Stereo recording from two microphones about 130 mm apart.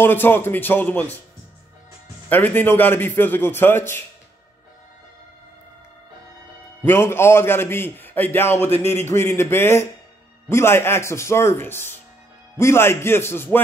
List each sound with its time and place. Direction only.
0.0 s a man's voice: 15° left (ahead or behind)
2.2 s a man's voice: 15° left (ahead or behind)
6.8 s a man's voice: 15° left (ahead or behind)